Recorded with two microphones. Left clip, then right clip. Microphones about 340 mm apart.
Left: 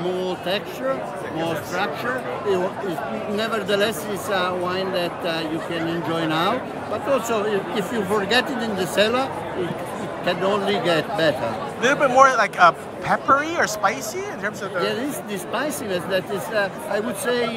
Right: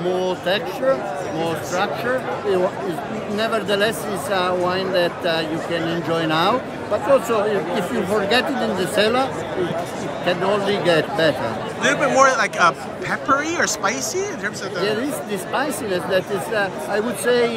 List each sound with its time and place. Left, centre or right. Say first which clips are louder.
3.3 s a man's voice: right 2 dB; centre